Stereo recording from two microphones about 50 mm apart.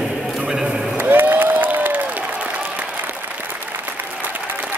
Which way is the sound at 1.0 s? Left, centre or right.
Right.